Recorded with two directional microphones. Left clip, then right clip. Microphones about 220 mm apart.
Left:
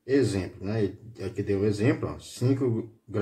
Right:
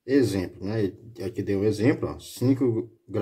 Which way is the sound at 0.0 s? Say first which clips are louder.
Right 2 dB; 30° right (ahead or behind).